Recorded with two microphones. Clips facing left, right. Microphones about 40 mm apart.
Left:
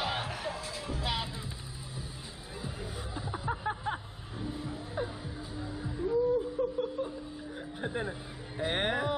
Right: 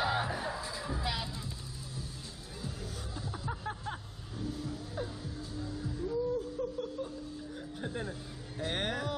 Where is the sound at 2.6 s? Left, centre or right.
Left.